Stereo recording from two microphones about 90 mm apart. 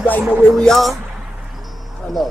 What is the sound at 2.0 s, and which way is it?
Speech, centre (ahead or behind).